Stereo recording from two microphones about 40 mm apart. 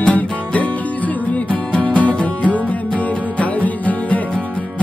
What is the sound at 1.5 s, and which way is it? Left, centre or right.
Music, left.